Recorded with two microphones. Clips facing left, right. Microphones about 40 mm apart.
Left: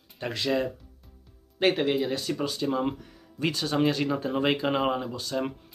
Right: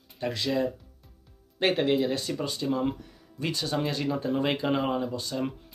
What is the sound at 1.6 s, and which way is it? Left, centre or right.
Speech, centre.